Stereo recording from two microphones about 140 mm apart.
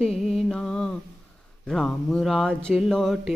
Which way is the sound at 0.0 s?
Centre (ahead or behind).